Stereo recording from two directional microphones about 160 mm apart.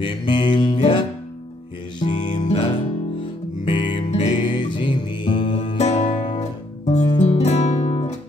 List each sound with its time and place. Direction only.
0.0 s music: 30° left (ahead or behind)
5.8 s music: 45° left (ahead or behind)